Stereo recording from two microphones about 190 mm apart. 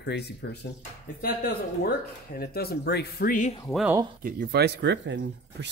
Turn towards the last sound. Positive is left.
turn(degrees=-65)  # may be behind; listen again after turning